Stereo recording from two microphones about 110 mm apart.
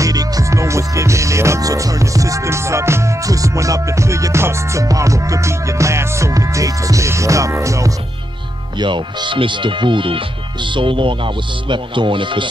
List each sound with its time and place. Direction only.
0.0 s music: 30° right (ahead or behind)
8.7 s speech: 45° right (ahead or behind)